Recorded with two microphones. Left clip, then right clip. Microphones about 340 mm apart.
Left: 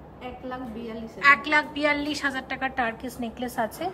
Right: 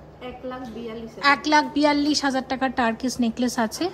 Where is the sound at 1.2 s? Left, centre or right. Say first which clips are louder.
Right 1 dB; centre.